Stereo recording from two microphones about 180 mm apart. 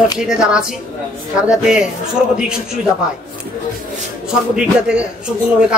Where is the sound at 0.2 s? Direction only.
5° right (ahead or behind).